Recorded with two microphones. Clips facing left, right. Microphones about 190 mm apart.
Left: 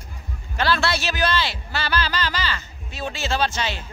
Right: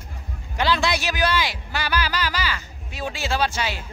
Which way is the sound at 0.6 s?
15° right (ahead or behind).